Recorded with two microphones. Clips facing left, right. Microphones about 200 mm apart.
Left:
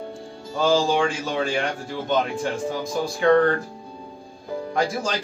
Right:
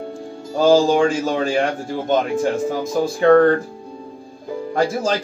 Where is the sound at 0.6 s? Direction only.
45° right (ahead or behind).